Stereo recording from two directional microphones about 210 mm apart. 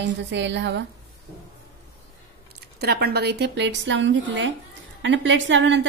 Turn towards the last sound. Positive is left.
turn(degrees=-60)  # may be behind; listen again after turning